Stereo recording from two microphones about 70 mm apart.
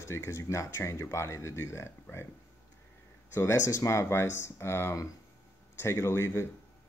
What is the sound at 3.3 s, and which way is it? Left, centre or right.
Speech, left.